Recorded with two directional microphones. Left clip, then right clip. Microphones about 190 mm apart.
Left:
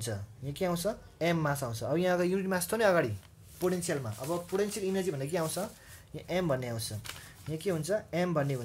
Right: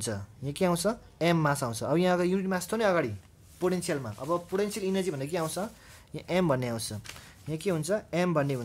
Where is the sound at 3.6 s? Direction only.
25° right (ahead or behind).